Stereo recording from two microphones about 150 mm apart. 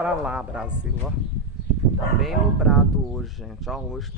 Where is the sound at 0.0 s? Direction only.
10° right (ahead or behind).